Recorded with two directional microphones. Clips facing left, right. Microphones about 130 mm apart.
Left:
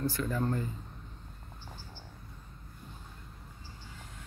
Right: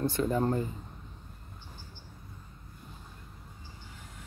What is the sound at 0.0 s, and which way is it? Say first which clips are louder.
Speech: right 4 dB; 25° right (ahead or behind).